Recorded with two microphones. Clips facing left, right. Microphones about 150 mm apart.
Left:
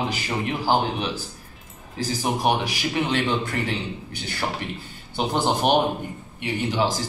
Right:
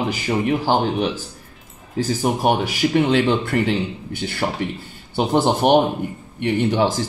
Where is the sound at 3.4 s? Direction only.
65° right (ahead or behind).